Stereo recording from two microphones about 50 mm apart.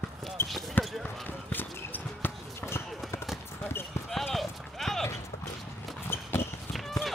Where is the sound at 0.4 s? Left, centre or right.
Left.